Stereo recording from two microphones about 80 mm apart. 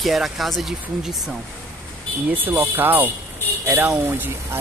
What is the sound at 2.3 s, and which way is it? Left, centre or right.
Speech, right.